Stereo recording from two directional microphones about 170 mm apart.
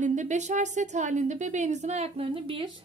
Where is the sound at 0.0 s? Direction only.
45° right (ahead or behind); by 2.7 s 30° right (ahead or behind).